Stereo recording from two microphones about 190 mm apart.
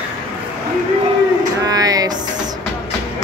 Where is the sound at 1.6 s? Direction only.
20° right (ahead or behind).